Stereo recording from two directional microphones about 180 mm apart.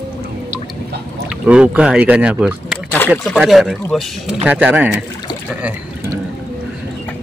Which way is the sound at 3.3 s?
Centre (ahead or behind).